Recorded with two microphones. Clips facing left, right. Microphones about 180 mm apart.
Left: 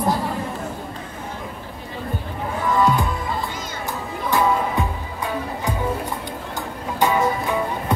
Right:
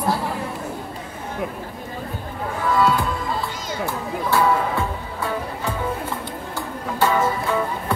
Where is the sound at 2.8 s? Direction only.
15° left (ahead or behind).